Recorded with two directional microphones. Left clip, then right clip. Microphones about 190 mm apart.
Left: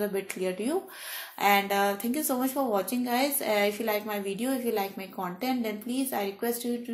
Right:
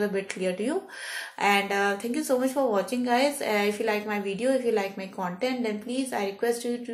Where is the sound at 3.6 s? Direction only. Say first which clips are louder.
Left 1 dB; 35° left (ahead or behind).